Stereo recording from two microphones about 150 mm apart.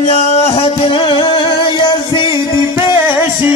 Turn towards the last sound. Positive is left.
turn(degrees=-15)  # may be behind; listen again after turning